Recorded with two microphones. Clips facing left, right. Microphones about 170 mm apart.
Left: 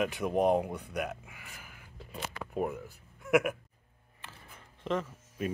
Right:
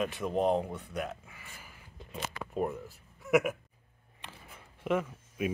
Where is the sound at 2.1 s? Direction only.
Centre (ahead or behind).